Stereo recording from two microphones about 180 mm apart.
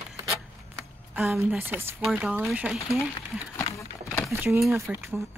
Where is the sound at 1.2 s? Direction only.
5° right (ahead or behind).